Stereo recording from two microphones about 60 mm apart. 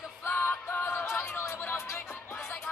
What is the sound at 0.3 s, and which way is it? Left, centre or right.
Music, left.